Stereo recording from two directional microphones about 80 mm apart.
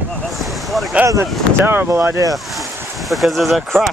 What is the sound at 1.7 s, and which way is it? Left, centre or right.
Speech, right.